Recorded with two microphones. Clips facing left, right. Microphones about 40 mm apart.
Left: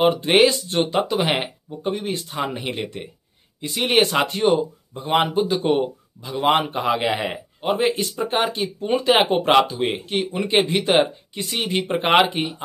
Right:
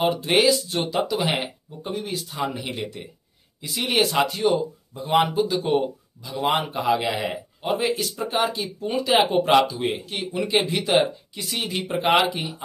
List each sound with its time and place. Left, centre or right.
0.0 s speech: left